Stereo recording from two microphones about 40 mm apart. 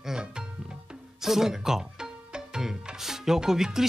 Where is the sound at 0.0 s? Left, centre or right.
Centre.